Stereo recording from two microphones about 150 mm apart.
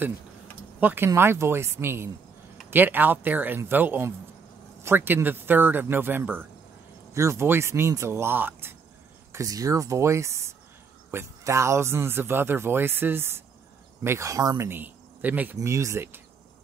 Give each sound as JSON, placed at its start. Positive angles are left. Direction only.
{"t": 0.7, "sound": "speech", "side_deg": -10}